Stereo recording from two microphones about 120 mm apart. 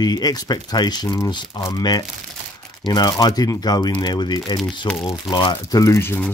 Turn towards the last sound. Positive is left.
turn(degrees=20)  # may be behind; listen again after turning